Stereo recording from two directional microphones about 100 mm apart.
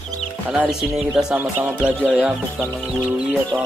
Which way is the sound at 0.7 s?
5° right (ahead or behind).